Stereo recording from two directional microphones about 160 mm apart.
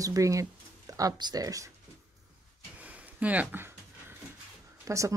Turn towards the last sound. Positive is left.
turn(degrees=-20)  # may be behind; listen again after turning